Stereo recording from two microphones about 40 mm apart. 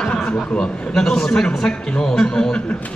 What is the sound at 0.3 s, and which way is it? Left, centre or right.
A man's voice, centre.